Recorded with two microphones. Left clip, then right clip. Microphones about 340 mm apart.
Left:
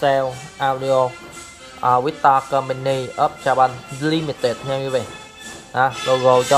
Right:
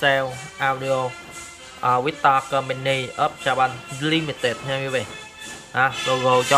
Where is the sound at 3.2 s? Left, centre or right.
Centre.